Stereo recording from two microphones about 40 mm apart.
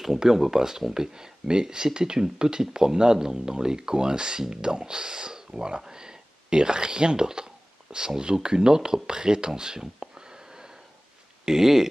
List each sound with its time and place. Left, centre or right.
0.0 s speech: centre